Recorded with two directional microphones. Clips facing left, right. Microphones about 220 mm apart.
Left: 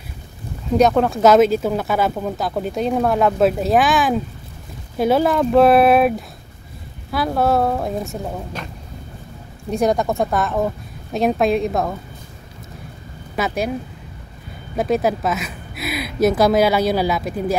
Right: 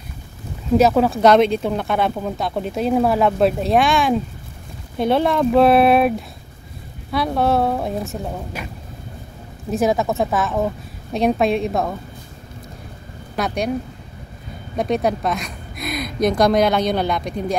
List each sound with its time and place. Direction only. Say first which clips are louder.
0.7 s speech: even; 5° right (ahead or behind)
9.7 s speech: even; centre (ahead or behind)
13.4 s speech: left 1 dB; 5° left (ahead or behind)
14.8 s speech: left 1 dB; 5° left (ahead or behind)